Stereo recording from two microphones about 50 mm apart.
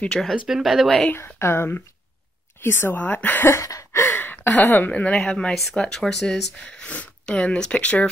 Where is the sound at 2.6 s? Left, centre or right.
Left.